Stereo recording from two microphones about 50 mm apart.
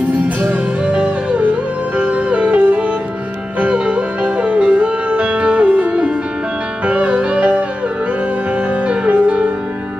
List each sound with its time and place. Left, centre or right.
0.5 s music: right
8.8 s music: right